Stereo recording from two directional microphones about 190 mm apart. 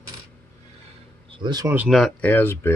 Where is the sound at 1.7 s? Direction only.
Centre (ahead or behind).